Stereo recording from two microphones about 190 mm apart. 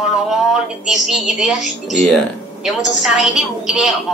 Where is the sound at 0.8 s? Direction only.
Centre (ahead or behind).